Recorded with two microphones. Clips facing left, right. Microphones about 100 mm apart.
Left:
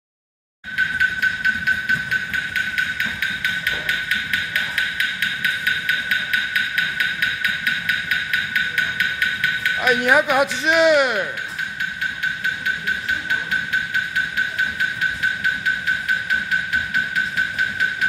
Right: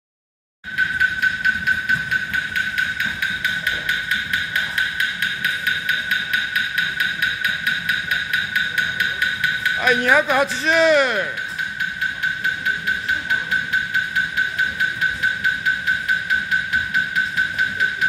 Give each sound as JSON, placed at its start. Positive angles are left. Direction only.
{"t": 3.4, "sound": "music", "side_deg": -25}
{"t": 9.8, "sound": "speech", "side_deg": 5}